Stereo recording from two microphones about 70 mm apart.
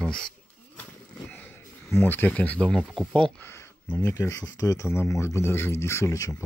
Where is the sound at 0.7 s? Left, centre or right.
Left.